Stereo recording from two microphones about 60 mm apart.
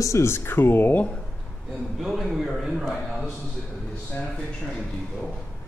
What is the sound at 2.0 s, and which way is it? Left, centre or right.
Speech, centre.